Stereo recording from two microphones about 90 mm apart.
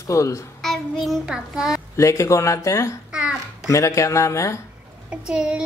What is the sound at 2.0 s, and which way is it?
Speech, 35° left (ahead or behind).